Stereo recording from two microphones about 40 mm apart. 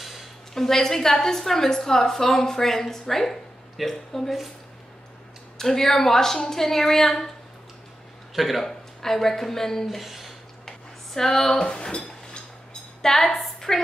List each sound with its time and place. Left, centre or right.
0.0 s a sound: centre
0.6 s a woman's voice: centre
5.6 s a woman's voice: centre
8.4 s speech: centre
9.8 s speech: centre
11.1 s a woman's voice: centre
11.6 s speech: left
13.0 s a woman's voice: centre